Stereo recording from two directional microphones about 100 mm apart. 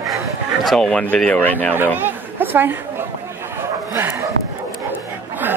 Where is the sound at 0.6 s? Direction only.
Centre (ahead or behind).